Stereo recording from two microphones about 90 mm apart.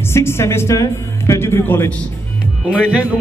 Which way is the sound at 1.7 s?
20° left (ahead or behind).